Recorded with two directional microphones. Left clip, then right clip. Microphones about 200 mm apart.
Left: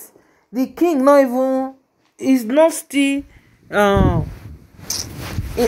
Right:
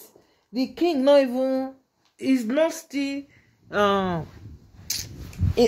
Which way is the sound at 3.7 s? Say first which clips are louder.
Left 6 dB; 15° left (ahead or behind).